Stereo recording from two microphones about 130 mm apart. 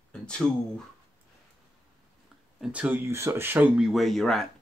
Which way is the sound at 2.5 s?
10° right (ahead or behind).